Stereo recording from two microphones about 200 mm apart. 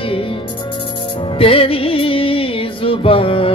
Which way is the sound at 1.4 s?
30° left (ahead or behind).